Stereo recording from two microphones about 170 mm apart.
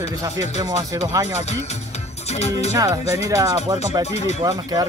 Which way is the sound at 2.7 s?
20° right (ahead or behind).